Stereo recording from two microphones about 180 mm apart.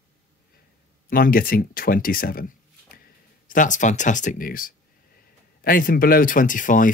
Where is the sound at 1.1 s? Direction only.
50° left (ahead or behind).